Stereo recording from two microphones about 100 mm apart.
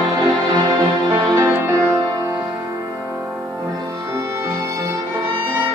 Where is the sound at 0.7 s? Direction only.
35° right (ahead or behind).